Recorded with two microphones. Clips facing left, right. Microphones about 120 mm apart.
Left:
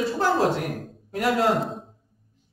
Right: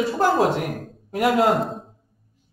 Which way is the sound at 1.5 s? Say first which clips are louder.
Right 2 dB; centre (ahead or behind).